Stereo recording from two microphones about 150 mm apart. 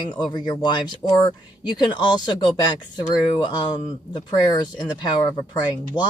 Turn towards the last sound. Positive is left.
turn(degrees=30)  # may be behind; listen again after turning